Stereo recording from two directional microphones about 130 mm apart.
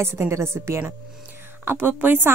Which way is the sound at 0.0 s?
20° right (ahead or behind).